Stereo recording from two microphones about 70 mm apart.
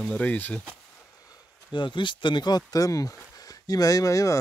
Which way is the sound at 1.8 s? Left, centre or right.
Left.